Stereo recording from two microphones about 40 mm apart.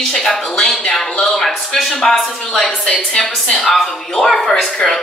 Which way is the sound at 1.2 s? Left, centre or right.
Centre.